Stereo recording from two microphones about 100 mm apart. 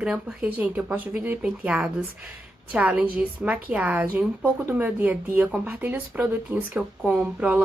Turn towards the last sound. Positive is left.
turn(degrees=-10)  # may be behind; listen again after turning